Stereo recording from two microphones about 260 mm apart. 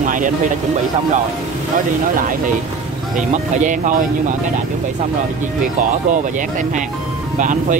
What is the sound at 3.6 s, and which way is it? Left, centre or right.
Speech, right.